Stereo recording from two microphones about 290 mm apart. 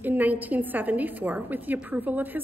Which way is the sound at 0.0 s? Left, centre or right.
Centre.